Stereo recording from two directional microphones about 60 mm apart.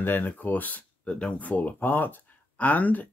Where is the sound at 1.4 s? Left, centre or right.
Left.